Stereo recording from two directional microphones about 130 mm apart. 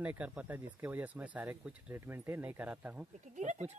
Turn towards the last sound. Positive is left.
turn(degrees=-65)  # may be behind; listen again after turning